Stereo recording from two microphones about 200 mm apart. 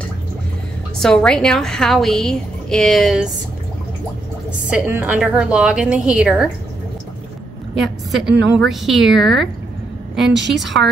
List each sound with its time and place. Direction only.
0.9 s a woman's voice: 5° left (ahead or behind)
4.6 s a woman's voice: 5° right (ahead or behind)
7.7 s a woman's voice: centre (ahead or behind)
10.5 s a woman's voice: centre (ahead or behind)